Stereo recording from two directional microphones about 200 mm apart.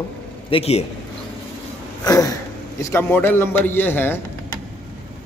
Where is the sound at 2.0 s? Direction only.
20° left (ahead or behind).